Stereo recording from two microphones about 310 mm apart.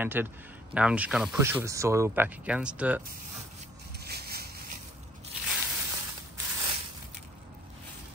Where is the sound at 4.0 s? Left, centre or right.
Right.